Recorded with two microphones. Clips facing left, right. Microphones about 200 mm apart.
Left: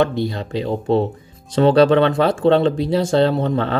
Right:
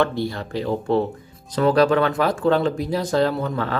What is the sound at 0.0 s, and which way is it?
Speech, 20° left (ahead or behind).